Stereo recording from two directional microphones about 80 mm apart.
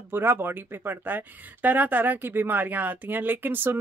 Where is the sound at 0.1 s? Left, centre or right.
Right.